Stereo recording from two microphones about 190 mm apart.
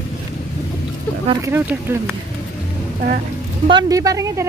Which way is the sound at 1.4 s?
15° right (ahead or behind).